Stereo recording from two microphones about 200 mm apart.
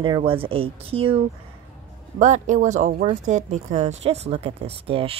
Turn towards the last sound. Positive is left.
turn(degrees=-30)  # may be behind; listen again after turning